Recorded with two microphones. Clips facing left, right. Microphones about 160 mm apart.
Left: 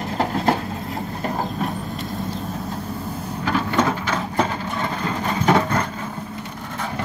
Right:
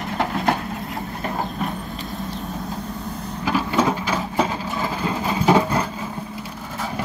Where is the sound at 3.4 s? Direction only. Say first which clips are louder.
Even; 10° right (ahead or behind).